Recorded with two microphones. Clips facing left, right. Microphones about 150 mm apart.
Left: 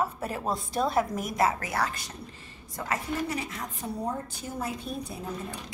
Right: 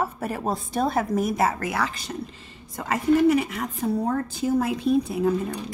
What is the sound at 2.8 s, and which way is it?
A woman's voice, 60° right (ahead or behind).